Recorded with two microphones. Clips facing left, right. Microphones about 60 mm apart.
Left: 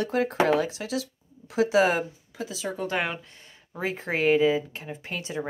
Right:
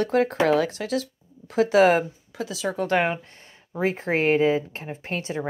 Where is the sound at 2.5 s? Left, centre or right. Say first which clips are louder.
Right 5 dB; right.